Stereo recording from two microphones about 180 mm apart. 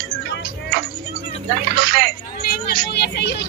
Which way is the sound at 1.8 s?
55° right (ahead or behind).